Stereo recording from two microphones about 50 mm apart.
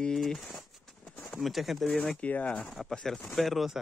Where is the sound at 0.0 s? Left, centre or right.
Centre.